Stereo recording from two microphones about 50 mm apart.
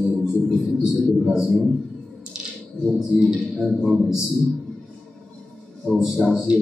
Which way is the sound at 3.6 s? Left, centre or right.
Centre.